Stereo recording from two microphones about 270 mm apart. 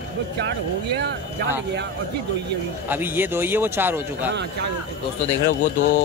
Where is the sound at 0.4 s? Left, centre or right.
Right.